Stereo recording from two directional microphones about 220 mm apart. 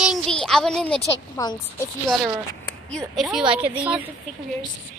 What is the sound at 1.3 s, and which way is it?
Speech, 15° left (ahead or behind).